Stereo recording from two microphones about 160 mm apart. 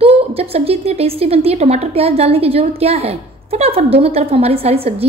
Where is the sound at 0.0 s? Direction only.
40° right (ahead or behind).